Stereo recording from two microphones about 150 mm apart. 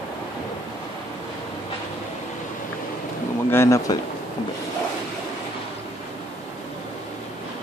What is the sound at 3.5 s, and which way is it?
Speech, 20° left (ahead or behind).